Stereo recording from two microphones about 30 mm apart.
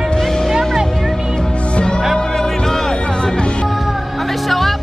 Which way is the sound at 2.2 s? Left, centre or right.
Centre.